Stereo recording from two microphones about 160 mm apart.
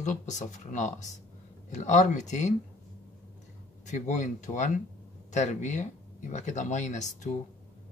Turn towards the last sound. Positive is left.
turn(degrees=45)  # may be behind; listen again after turning